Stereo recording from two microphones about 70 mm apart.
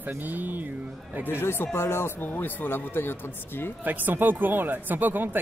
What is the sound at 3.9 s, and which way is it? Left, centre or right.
Speech, right.